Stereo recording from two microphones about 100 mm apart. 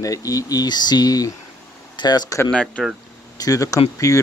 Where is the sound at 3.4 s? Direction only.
35° left (ahead or behind).